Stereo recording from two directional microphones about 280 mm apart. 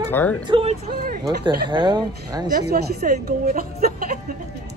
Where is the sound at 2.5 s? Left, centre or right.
Right.